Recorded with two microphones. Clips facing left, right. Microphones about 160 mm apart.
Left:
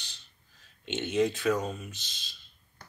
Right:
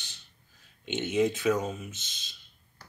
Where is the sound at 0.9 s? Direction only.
15° right (ahead or behind).